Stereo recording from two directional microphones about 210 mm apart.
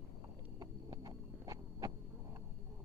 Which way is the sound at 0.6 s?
20° right (ahead or behind).